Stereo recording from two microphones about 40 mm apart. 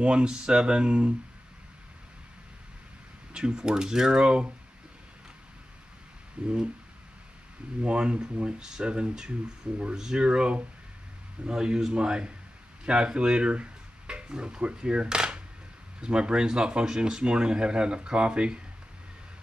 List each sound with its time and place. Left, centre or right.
0.0 s speech: right
3.3 s speech: centre
6.4 s speech: right
7.8 s speech: right